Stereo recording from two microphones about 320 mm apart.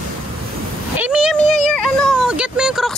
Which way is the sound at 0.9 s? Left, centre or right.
Centre.